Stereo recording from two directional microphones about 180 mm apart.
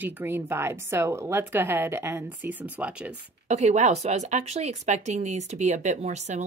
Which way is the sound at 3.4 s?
40° right (ahead or behind).